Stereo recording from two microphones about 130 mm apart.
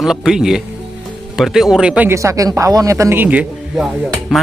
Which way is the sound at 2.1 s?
25° right (ahead or behind).